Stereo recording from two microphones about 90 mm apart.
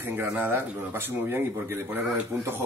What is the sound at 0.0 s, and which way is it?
A man's voice, 25° right (ahead or behind).